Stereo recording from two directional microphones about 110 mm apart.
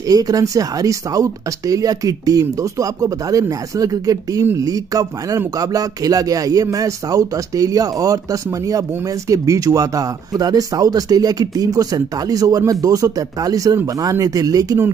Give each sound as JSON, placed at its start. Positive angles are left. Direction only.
{"t": 0.1, "sound": "speech", "side_deg": -35}